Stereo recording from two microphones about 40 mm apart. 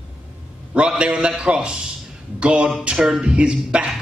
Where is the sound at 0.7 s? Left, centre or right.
Right.